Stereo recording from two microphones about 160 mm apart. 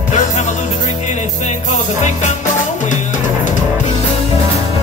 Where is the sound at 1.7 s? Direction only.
50° left (ahead or behind).